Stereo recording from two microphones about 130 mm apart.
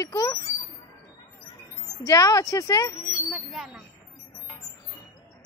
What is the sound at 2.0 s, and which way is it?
Speech, 25° left (ahead or behind).